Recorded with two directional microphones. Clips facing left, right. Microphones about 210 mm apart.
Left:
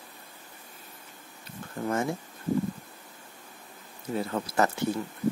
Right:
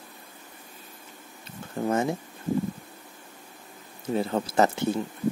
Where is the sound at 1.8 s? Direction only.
20° right (ahead or behind).